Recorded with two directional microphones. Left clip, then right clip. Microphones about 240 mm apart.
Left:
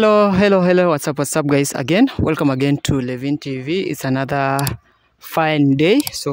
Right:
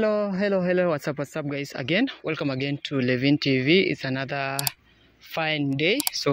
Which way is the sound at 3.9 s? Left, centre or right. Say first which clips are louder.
Left 8 dB; left.